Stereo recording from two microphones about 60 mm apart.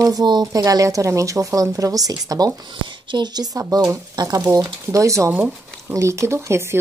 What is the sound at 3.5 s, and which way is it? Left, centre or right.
Speech, right.